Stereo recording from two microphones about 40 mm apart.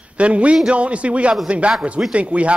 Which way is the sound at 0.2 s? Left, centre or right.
Right.